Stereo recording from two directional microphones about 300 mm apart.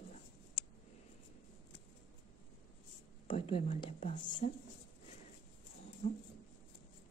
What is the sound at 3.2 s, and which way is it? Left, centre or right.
Whispering, centre.